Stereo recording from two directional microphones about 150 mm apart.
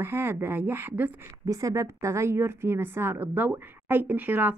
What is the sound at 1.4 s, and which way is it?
A woman's voice, 25° right (ahead or behind).